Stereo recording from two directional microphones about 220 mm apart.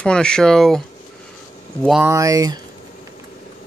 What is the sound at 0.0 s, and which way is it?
Speech, 5° left (ahead or behind).